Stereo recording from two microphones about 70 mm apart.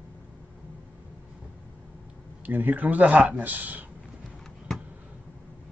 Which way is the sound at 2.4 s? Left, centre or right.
Right.